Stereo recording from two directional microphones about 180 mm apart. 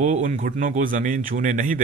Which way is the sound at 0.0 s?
45° right (ahead or behind).